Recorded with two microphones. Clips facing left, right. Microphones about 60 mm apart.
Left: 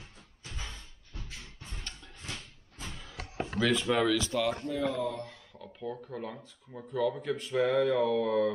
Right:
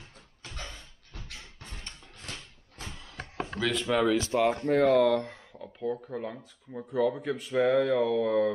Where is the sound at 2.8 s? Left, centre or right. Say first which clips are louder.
Right 1 dB; centre.